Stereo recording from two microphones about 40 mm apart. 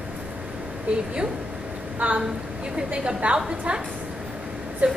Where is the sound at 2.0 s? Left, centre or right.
Right.